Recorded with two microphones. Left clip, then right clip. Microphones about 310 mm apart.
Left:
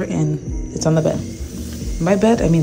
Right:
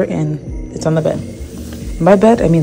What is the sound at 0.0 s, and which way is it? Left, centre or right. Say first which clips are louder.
Speech: right 5 dB; centre.